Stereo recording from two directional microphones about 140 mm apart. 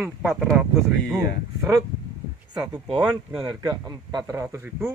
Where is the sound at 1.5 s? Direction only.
25° right (ahead or behind).